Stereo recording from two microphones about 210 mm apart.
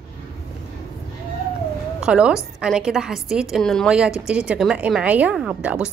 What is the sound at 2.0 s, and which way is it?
A woman's voice, 5° right (ahead or behind).